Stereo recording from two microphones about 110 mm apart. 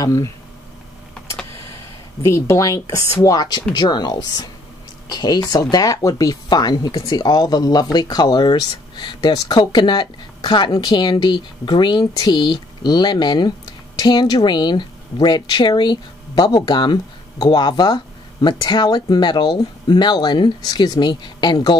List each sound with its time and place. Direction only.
0.0 s speech: 30° left (ahead or behind)
1.2 s computer keyboard: 25° left (ahead or behind)
2.2 s a woman's voice: 25° left (ahead or behind); by 21.7 s 40° left (ahead or behind)